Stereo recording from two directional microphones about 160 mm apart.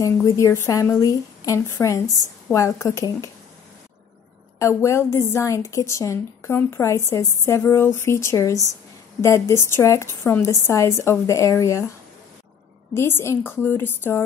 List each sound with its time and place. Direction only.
0.0 s a woman's voice: 20° left (ahead or behind)
4.6 s a woman's voice: 15° left (ahead or behind)
12.9 s a woman's voice: 15° left (ahead or behind)